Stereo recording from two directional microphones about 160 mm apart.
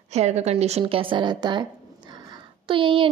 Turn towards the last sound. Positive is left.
turn(degrees=-30)  # may be behind; listen again after turning